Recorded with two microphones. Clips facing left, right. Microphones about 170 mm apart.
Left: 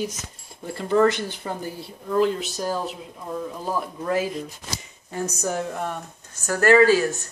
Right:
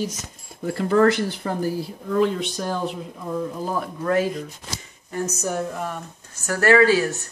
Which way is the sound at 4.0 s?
5° left (ahead or behind).